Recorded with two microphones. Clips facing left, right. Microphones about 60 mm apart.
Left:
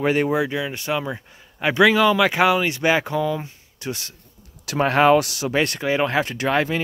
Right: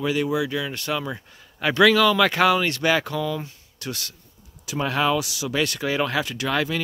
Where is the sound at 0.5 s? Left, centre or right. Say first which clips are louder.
Left 2 dB; left.